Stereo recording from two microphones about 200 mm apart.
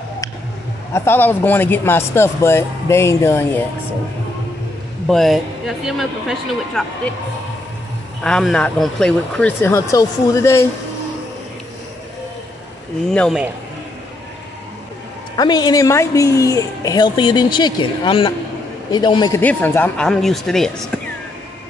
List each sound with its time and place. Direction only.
0.9 s speech: 10° left (ahead or behind)
5.0 s speech: centre (ahead or behind)
8.2 s speech: centre (ahead or behind)
13.1 s speech: 5° left (ahead or behind)
15.3 s speech: 20° left (ahead or behind)
19.4 s speech: 10° left (ahead or behind)